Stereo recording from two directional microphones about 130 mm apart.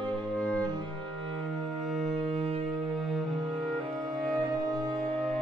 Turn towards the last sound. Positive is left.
turn(degrees=-30)  # may be behind; listen again after turning